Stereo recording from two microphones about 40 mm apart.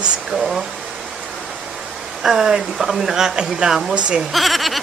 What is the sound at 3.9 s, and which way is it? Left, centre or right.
Speech, right.